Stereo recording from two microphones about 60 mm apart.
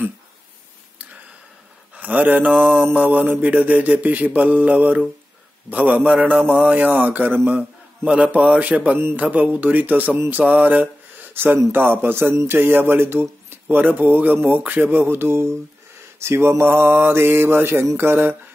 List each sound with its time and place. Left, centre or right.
2.0 s a man's voice: right
8.9 s speech: right
9.2 s speech: right
10.3 s a sound: right
11.7 s speech: right
16.2 s mantra: right
17.9 s speech: right